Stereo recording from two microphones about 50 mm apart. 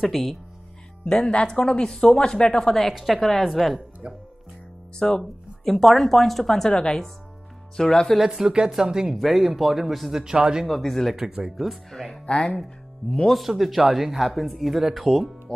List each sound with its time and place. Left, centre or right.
0.0 s speech: centre
1.0 s speech: centre
2.9 s speech: centre
4.0 s speech: right
4.9 s speech: centre
5.7 s speech: centre
8.2 s speech: centre
9.1 s speech: centre
10.2 s speech: centre
10.7 s speech: centre
11.1 s speech: centre
11.9 s speech: centre
12.3 s speech: left
13.3 s speech: centre